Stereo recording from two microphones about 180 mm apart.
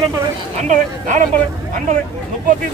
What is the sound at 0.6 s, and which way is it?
Speech, 45° right (ahead or behind).